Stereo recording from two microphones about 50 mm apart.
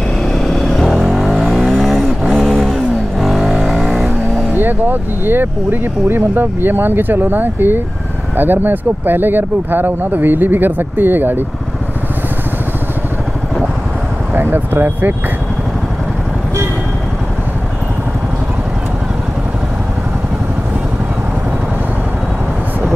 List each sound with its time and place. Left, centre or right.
0.3 s vehicle: centre
4.5 s speech: right
14.3 s speech: right